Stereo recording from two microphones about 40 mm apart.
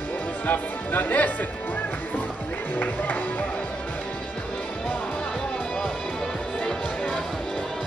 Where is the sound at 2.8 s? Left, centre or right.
Left.